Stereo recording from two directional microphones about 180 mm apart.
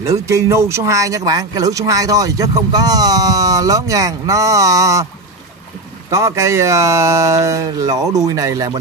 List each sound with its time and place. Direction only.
0.3 s speech: 15° right (ahead or behind)
6.0 s speech: 15° right (ahead or behind)